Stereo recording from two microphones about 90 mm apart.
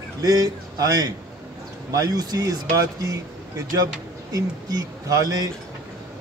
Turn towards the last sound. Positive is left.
turn(degrees=-45)  # may be behind; listen again after turning